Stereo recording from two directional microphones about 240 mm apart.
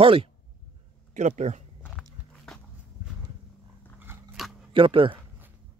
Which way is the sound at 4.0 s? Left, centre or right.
Centre.